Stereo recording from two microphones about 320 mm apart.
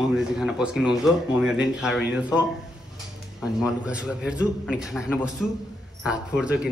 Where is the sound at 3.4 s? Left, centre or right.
Centre.